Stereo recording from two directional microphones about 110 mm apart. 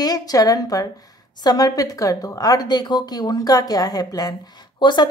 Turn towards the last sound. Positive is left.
turn(degrees=45)  # may be behind; listen again after turning